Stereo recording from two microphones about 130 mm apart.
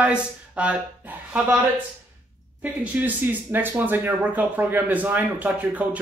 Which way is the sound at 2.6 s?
10° right (ahead or behind).